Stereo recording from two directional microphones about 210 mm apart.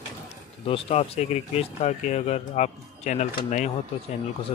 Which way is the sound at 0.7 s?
25° left (ahead or behind).